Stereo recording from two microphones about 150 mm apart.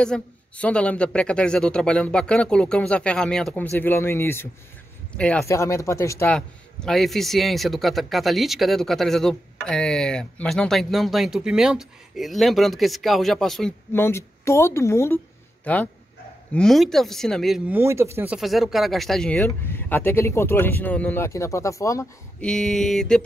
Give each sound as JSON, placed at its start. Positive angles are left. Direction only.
{"t": 0.0, "sound": "speech", "side_deg": 5}
{"t": 5.5, "sound": "speech", "side_deg": 20}
{"t": 6.3, "sound": "a man's voice", "side_deg": 5}
{"t": 13.9, "sound": "a man's voice", "side_deg": 15}
{"t": 17.6, "sound": "speech", "side_deg": -15}
{"t": 22.4, "sound": "a man's voice", "side_deg": 5}